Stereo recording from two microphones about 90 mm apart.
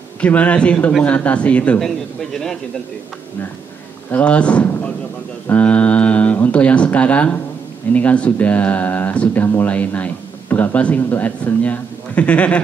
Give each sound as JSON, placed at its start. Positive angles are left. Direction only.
{"t": 0.2, "sound": "a man's voice", "side_deg": 15}
{"t": 4.1, "sound": "a man's voice", "side_deg": 15}